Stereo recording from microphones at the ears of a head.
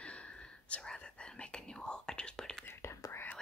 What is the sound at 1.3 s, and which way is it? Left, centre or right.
Whispering, centre.